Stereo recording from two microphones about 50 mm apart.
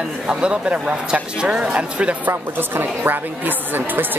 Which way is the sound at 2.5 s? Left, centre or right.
Right.